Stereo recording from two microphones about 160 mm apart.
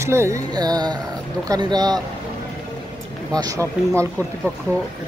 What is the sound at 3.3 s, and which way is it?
Speech, 20° right (ahead or behind).